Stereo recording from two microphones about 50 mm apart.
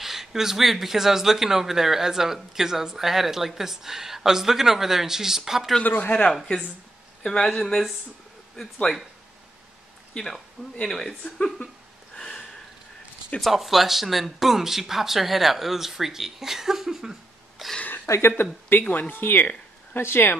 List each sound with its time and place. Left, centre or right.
0.0 s speech: centre
5.9 s speech: left
7.2 s speech: centre
10.1 s speech: centre
12.2 s a sound: centre
13.4 s speech: centre
18.0 s speech: left
18.4 s speech: left